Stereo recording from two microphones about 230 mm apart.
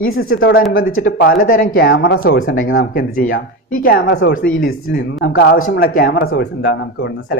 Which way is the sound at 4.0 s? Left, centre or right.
Left.